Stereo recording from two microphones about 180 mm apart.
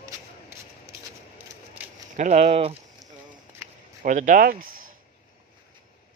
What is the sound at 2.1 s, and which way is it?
Speech, 40° right (ahead or behind).